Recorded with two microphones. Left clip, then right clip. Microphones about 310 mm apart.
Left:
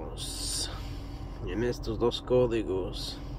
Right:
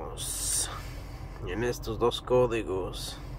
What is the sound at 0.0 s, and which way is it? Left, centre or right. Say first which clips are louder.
Music: right 1 dB; centre.